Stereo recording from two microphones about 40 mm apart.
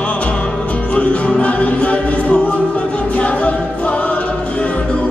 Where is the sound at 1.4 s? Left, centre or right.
Left.